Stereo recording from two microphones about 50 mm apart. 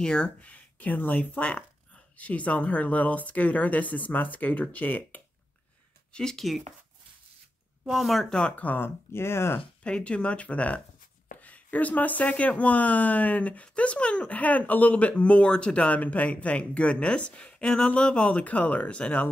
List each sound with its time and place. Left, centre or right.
0.0 s speech: centre
6.1 s speech: centre
7.9 s speech: centre
8.3 s speech: centre
8.5 s speech: left
8.8 s speech: left
9.6 s speech: left
18.4 s speech: left